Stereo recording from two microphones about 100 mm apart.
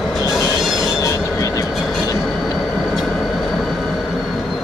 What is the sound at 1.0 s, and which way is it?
Train, 35° left (ahead or behind).